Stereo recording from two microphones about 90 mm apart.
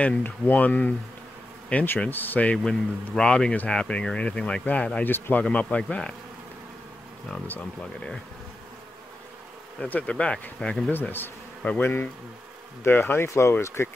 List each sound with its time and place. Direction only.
0.0 s speech: 15° left (ahead or behind)
2.5 s speech: 10° left (ahead or behind)
7.4 s speech: 20° left (ahead or behind)
9.8 s speech: 15° left (ahead or behind)
10.9 s speech: 20° left (ahead or behind)